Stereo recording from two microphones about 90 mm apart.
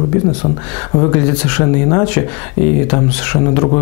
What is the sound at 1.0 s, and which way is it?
Speech, 15° left (ahead or behind).